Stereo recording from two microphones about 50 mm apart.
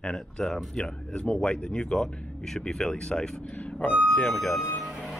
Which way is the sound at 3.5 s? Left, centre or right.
Left.